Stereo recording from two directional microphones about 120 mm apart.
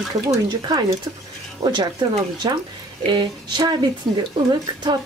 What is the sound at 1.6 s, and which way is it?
Speech, 40° right (ahead or behind).